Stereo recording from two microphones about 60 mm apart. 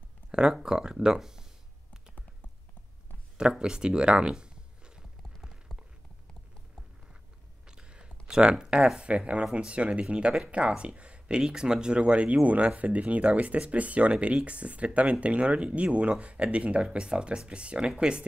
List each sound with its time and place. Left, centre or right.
0.3 s speech: centre
3.3 s a sound: centre
7.6 s speech: centre